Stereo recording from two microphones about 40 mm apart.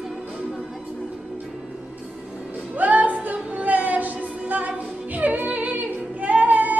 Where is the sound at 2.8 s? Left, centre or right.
Right.